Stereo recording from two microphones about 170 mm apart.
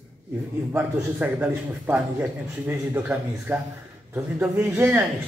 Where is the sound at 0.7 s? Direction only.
5° right (ahead or behind).